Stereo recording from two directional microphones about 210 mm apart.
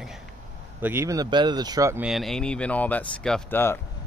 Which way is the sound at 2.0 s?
Centre (ahead or behind).